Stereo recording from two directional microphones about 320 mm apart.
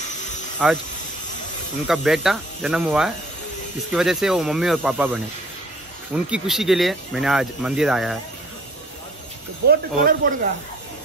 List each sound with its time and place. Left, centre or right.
0.6 s speech: centre
1.9 s speech: centre
9.7 s speech: right